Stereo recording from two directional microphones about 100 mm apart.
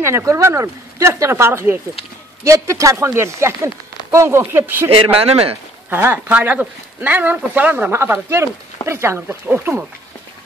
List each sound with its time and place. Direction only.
0.0 s a man's voice: 30° right (ahead or behind)
5.2 s speech: 75° right (ahead or behind)
5.9 s speech: 20° right (ahead or behind)